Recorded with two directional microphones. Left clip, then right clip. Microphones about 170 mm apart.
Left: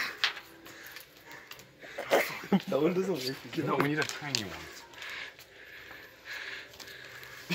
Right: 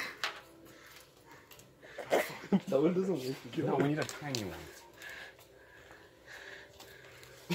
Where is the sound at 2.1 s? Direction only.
45° left (ahead or behind).